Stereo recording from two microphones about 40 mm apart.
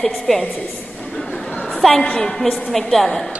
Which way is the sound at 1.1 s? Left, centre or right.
Centre.